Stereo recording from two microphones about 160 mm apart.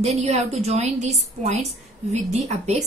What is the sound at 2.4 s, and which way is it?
Speech, 45° right (ahead or behind).